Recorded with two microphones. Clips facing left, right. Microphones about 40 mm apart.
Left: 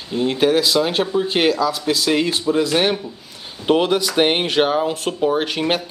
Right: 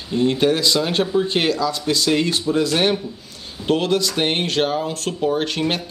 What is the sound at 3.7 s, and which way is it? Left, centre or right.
Speech, centre.